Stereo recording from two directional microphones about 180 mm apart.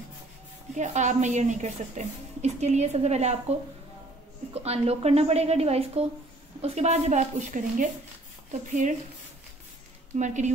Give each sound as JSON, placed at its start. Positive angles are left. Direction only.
{"t": 0.7, "sound": "a woman's voice", "side_deg": -40}
{"t": 4.6, "sound": "a woman's voice", "side_deg": -35}
{"t": 10.1, "sound": "a woman's voice", "side_deg": -40}